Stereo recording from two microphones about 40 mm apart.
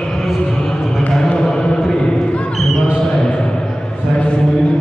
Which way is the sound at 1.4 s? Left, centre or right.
Centre.